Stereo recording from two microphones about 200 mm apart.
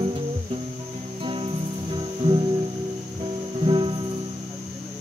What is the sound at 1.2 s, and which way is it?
Music, 25° right (ahead or behind).